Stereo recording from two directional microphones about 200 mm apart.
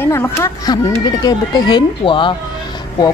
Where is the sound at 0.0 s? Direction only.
15° left (ahead or behind).